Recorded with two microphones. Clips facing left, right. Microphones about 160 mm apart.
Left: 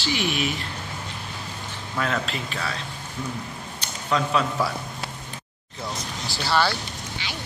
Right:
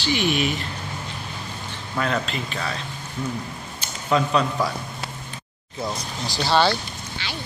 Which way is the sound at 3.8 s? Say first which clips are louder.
Right 3 dB; 5° right (ahead or behind).